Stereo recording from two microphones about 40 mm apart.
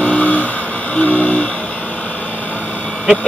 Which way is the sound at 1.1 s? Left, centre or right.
Left.